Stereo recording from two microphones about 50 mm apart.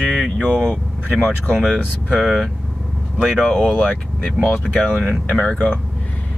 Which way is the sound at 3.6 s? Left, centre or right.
Left.